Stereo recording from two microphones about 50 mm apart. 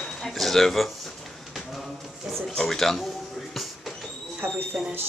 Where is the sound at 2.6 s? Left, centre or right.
Centre.